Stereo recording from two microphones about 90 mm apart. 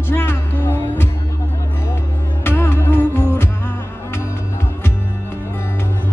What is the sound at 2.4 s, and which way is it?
Music, 25° left (ahead or behind).